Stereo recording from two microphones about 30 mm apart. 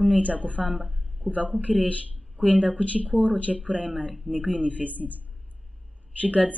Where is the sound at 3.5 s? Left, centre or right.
Right.